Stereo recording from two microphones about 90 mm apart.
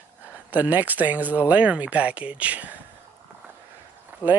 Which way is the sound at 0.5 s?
20° right (ahead or behind).